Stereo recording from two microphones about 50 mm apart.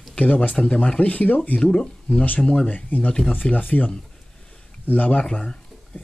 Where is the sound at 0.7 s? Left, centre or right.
Left.